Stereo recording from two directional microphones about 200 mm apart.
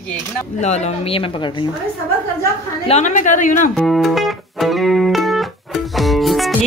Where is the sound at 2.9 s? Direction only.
35° left (ahead or behind).